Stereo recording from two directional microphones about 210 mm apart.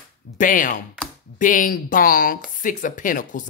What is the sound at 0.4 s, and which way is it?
Speech, 40° left (ahead or behind).